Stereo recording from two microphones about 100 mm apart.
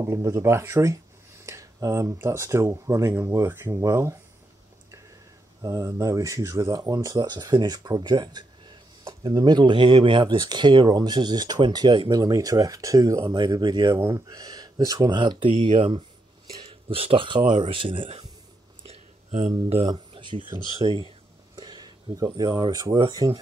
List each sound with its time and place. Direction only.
0.0 s speech: 30° right (ahead or behind)
5.6 s speech: 35° right (ahead or behind)
13.9 s speech: 30° right (ahead or behind); by 18.2 s 65° right (ahead or behind)
19.9 s a sound: 55° right (ahead or behind)
20.8 s speech: 55° right (ahead or behind)
21.5 s a sound: 45° right (ahead or behind)
22.2 s speech: 40° right (ahead or behind)
22.9 s speech: 55° right (ahead or behind)